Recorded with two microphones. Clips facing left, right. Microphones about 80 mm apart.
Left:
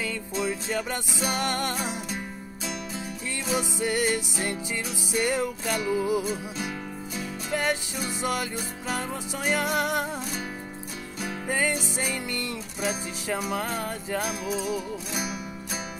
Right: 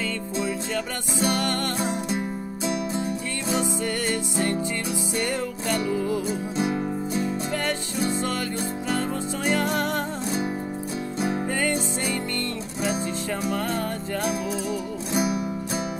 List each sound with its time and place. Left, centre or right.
0.4 s music: centre
3.5 s music: centre
7.5 s music: centre
9.5 s music: centre
11.5 s music: centre